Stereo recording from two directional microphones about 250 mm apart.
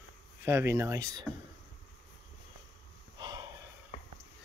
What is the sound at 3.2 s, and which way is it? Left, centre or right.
Snort, centre.